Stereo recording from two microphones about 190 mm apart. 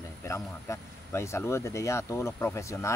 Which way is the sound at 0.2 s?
15° left (ahead or behind).